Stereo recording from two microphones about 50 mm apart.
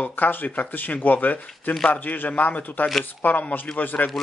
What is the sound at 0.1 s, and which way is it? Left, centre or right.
A man's voice, left.